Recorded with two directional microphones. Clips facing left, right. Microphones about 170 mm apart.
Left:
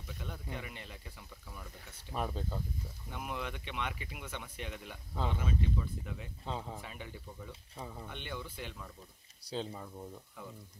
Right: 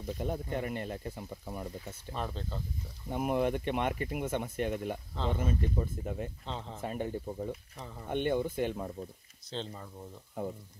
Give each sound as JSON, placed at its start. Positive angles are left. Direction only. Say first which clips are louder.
{"t": 0.0, "sound": "speech", "louder": "right 11 dB", "side_deg": -45}
{"t": 2.1, "sound": "speech", "louder": "left 1 dB", "side_deg": 10}
{"t": 3.1, "sound": "speech", "louder": "right 12 dB", "side_deg": -50}
{"t": 6.4, "sound": "speech", "louder": "even", "side_deg": 10}
{"t": 6.8, "sound": "speech", "louder": "right 12 dB", "side_deg": -45}
{"t": 9.5, "sound": "speech", "louder": "even", "side_deg": 5}
{"t": 10.4, "sound": "speech", "louder": "right 14 dB", "side_deg": -50}